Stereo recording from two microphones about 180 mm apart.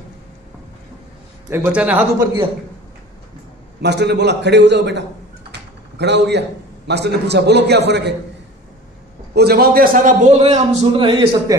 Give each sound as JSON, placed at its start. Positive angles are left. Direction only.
{"t": 1.5, "sound": "a man's voice", "side_deg": -10}
{"t": 3.8, "sound": "a man's voice", "side_deg": -70}
{"t": 5.5, "sound": "typing", "side_deg": -70}
{"t": 6.9, "sound": "a man's voice", "side_deg": -70}
{"t": 9.3, "sound": "a man's voice", "side_deg": -65}